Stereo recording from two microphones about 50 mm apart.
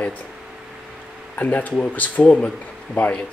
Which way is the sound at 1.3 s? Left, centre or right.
Left.